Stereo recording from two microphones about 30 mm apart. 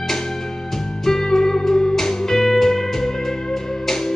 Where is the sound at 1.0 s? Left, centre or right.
Centre.